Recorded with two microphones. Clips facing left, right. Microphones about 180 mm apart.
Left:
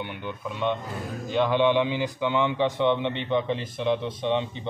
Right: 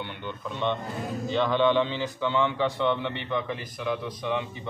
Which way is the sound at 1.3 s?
10° left (ahead or behind).